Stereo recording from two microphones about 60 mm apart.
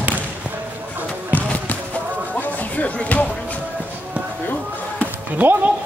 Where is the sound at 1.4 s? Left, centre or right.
Left.